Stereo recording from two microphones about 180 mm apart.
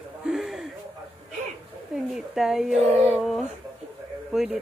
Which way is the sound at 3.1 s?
Centre (ahead or behind).